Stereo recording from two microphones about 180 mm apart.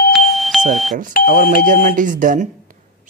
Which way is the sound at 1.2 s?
55° left (ahead or behind).